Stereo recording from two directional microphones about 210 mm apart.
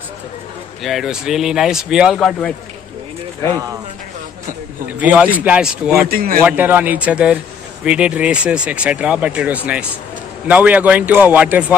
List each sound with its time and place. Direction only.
0.8 s speech: centre (ahead or behind)
4.9 s a man's voice: 5° right (ahead or behind)
5.9 s a man's voice: 45° right (ahead or behind)
6.4 s a man's voice: 10° right (ahead or behind)